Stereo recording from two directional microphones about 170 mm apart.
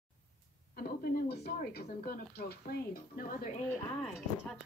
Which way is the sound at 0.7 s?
60° left (ahead or behind).